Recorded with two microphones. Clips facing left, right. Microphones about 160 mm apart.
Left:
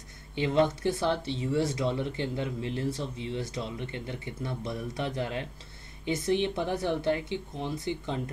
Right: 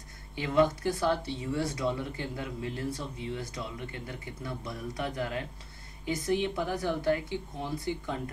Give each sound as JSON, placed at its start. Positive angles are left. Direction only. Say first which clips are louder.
{"t": 0.4, "sound": "speech", "louder": "left 1 dB", "side_deg": 25}